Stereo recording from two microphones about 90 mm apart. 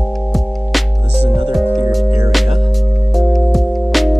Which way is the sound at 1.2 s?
70° right (ahead or behind).